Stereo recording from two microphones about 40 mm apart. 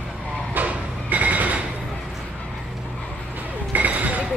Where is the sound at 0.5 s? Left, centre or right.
Right.